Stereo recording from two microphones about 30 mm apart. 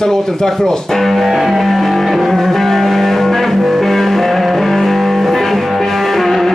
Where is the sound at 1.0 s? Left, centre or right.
Centre.